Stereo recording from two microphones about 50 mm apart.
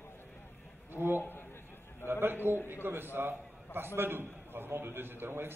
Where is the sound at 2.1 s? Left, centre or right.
Right.